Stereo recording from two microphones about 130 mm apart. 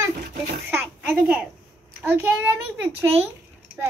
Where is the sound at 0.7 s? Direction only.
10° right (ahead or behind).